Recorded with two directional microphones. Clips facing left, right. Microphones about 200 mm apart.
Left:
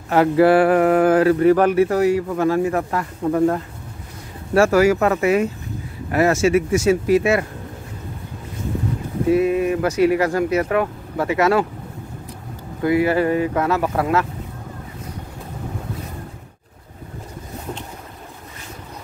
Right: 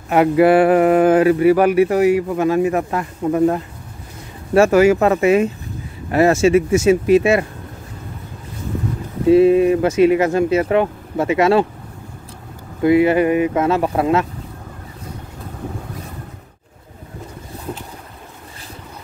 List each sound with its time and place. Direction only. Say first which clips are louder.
0.1 s speech: right 2 dB; 15° right (ahead or behind)
9.3 s speech: right 6 dB; 25° right (ahead or behind)
12.8 s speech: right 4 dB; 20° right (ahead or behind)